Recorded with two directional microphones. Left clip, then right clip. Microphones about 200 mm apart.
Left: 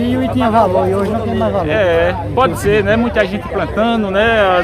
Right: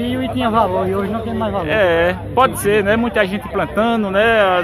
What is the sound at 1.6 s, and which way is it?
Speech, 35° right (ahead or behind).